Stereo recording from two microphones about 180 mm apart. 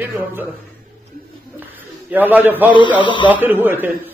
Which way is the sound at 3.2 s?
10° right (ahead or behind).